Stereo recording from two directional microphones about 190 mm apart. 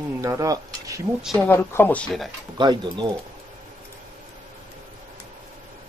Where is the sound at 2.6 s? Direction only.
25° right (ahead or behind).